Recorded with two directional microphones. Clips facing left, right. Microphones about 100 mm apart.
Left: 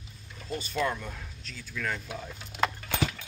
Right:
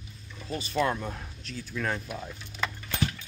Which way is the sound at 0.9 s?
25° right (ahead or behind).